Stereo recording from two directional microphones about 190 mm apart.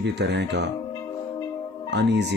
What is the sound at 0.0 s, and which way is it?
Speech, 65° right (ahead or behind).